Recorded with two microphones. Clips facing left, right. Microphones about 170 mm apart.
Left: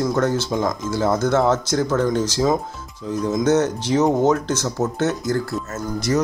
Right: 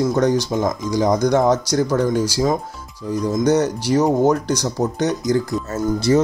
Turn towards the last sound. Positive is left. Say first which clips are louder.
# right 5 dB
turn(degrees=-30)  # may be behind; listen again after turning